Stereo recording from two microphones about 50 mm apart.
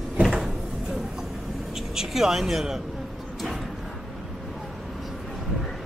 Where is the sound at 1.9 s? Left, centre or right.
Centre.